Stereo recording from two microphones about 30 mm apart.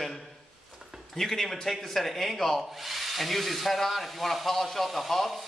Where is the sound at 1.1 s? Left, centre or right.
Centre.